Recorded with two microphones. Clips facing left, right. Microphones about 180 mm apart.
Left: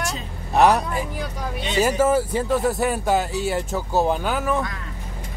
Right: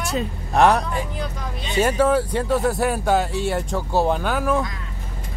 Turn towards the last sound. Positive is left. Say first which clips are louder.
# right 2 dB
turn(degrees=0)  # may be behind; listen again after turning